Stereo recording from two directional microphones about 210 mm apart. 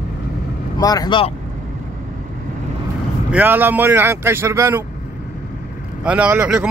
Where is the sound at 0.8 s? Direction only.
20° left (ahead or behind).